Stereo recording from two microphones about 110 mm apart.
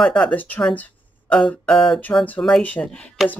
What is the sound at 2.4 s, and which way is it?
Speech, 10° left (ahead or behind).